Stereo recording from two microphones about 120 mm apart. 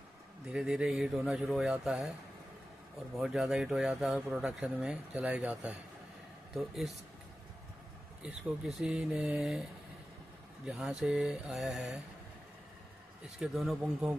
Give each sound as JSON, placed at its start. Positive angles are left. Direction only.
{"t": 0.5, "sound": "speech", "side_deg": -5}
{"t": 3.2, "sound": "speech", "side_deg": -5}
{"t": 8.2, "sound": "speech", "side_deg": -5}
{"t": 10.6, "sound": "speech", "side_deg": -5}
{"t": 13.4, "sound": "speech", "side_deg": 0}